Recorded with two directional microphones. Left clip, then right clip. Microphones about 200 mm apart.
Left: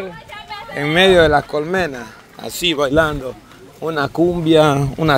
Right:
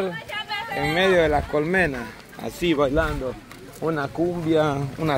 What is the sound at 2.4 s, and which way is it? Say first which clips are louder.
Speech: left 4 dB; 45° left (ahead or behind).